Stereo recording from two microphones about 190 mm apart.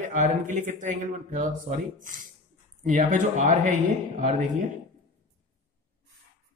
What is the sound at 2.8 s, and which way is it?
Speech, 45° right (ahead or behind).